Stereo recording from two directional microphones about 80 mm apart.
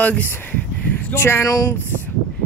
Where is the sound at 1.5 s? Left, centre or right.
Left.